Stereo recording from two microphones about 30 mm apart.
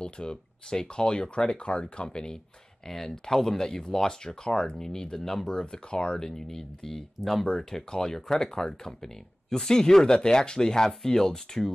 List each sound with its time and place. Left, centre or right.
0.0 s speech: left
2.9 s speech: centre
4.5 s speech: left
4.7 s speech: centre
9.0 s speech: centre